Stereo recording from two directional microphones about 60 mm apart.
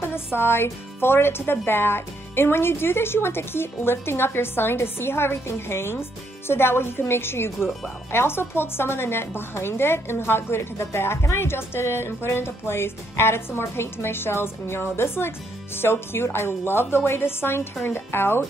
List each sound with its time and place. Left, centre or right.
0.0 s a woman's voice: left